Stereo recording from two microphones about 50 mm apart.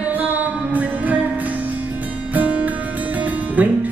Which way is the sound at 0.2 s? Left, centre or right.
Right.